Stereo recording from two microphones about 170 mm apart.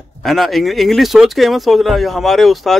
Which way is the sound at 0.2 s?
Centre (ahead or behind).